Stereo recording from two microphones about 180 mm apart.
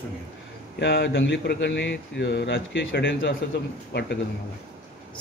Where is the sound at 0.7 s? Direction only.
75° left (ahead or behind).